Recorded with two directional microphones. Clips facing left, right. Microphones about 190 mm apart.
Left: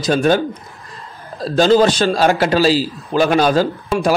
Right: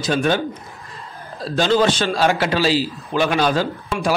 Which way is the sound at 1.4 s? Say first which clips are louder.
Left 5 dB; 40° left (ahead or behind).